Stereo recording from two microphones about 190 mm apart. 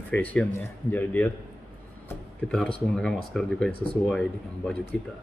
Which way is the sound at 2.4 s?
Centre (ahead or behind).